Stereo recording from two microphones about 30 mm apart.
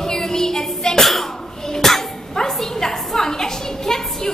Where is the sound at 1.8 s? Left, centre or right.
Centre.